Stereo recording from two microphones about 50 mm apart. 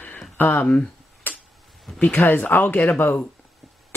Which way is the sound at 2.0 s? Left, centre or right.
Left.